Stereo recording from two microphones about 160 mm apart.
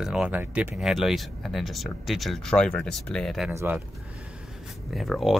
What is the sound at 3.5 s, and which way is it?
Speech, 15° right (ahead or behind).